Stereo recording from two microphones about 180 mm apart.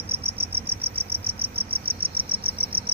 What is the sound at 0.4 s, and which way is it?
Cricket, 35° right (ahead or behind).